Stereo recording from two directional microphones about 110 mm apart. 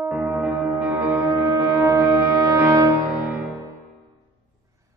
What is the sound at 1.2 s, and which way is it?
Music, 30° right (ahead or behind).